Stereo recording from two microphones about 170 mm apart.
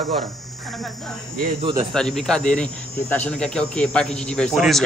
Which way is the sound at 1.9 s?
5° left (ahead or behind).